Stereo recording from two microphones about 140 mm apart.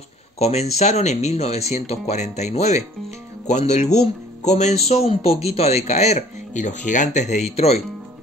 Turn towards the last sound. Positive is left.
turn(degrees=50)  # may be behind; listen again after turning